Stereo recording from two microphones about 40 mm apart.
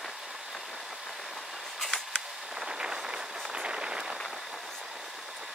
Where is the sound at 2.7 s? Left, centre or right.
Centre.